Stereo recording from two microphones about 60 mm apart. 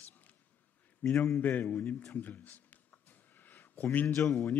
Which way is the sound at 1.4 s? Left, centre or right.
Left.